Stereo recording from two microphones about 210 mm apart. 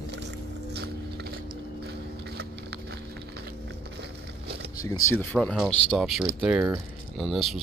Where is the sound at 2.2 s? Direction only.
50° right (ahead or behind).